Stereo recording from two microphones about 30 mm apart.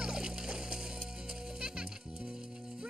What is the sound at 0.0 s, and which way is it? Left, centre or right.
Music, right.